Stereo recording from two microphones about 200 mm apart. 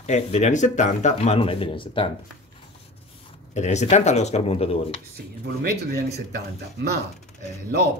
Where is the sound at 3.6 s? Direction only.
35° left (ahead or behind).